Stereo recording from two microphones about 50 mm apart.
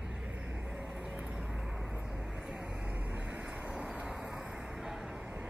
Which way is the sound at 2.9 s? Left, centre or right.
Right.